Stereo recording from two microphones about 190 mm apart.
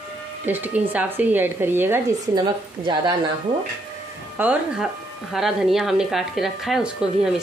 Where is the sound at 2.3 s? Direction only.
20° right (ahead or behind).